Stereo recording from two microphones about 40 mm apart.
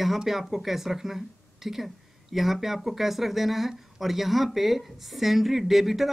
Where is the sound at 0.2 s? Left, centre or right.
Centre.